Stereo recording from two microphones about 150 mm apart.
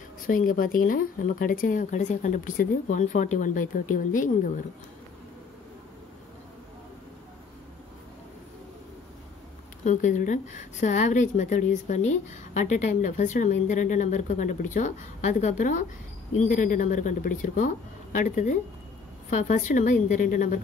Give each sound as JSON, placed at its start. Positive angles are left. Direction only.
{"t": 0.3, "sound": "a woman's voice", "side_deg": 65}
{"t": 9.8, "sound": "a woman's voice", "side_deg": 55}